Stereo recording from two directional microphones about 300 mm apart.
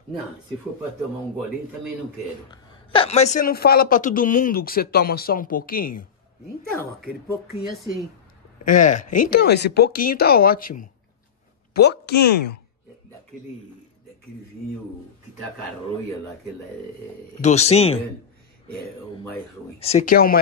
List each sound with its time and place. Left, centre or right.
2.5 s a woman's voice: centre
7.7 s a woman's voice: centre
8.6 s a woman's voice: left
17.4 s a woman's voice: left
19.8 s a woman's voice: left